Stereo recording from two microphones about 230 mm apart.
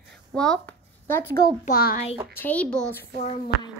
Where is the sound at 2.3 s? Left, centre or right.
Centre.